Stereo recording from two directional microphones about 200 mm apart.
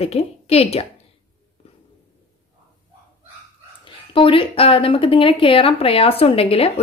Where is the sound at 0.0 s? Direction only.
30° left (ahead or behind).